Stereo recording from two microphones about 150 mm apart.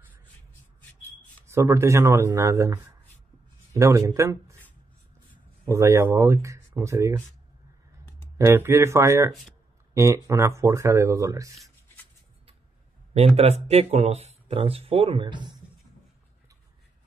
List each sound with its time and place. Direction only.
1.5 s speech: 20° right (ahead or behind)
5.7 s speech: 20° right (ahead or behind)
8.4 s speech: 20° right (ahead or behind)
13.1 s speech: 45° right (ahead or behind)